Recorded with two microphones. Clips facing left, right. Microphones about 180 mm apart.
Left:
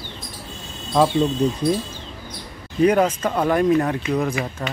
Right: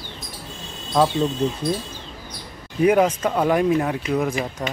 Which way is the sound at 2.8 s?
10° right (ahead or behind).